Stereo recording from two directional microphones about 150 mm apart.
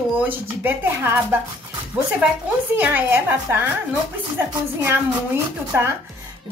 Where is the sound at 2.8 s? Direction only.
15° right (ahead or behind).